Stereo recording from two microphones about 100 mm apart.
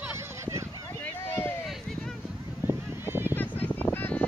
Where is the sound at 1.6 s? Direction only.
Centre (ahead or behind).